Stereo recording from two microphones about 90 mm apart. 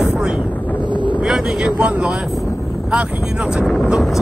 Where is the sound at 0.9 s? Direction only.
60° right (ahead or behind).